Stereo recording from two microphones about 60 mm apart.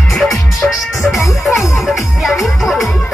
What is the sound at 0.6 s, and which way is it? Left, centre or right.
Music, left.